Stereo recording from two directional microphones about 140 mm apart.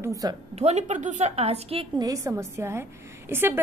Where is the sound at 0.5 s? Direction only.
50° right (ahead or behind).